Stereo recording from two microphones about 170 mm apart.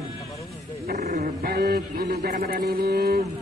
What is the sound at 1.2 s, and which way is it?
A man's voice, 65° right (ahead or behind).